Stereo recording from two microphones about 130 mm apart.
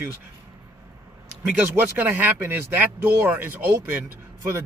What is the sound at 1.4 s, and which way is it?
Speech, 15° right (ahead or behind).